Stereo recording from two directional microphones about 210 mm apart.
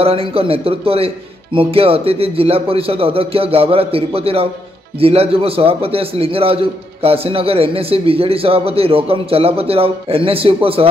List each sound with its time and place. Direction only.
0.0 s a man's voice: 25° right (ahead or behind)